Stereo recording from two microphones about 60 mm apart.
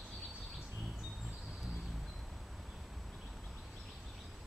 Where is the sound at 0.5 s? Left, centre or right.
Centre.